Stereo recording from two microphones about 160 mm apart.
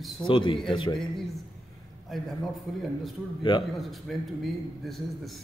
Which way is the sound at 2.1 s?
Centre (ahead or behind).